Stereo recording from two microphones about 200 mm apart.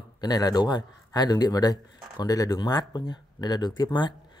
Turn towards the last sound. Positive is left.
turn(degrees=20)  # may be behind; listen again after turning